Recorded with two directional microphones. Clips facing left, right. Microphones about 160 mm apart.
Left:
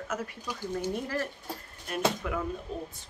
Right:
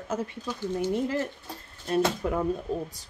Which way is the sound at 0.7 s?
20° right (ahead or behind).